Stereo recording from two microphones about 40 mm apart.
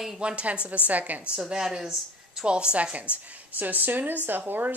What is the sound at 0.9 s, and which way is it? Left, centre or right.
Speech, right.